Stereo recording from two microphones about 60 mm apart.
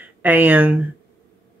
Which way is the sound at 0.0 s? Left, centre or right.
Right.